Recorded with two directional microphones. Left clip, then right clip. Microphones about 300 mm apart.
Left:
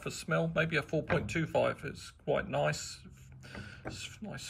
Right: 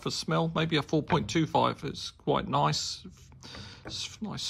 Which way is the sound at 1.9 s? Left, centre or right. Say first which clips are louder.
Right 4 dB; centre.